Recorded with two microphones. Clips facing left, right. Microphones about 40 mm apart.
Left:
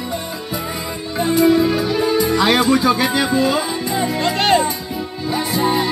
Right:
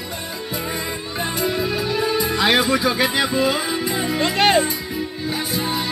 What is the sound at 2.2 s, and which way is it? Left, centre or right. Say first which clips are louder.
Speech: left 2 dB; centre.